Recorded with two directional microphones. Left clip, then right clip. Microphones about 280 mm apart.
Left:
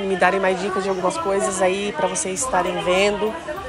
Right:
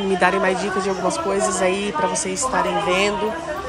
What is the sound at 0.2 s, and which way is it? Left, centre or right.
A woman's voice, centre.